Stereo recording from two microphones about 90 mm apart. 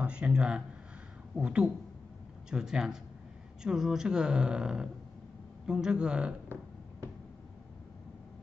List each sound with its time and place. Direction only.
0.0 s speech: 10° right (ahead or behind)